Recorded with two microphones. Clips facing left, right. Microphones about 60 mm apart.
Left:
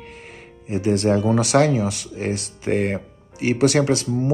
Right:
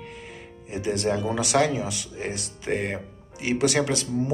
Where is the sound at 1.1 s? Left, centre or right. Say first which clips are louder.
Left 6 dB; left.